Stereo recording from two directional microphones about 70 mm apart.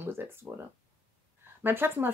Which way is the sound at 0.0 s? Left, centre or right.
Right.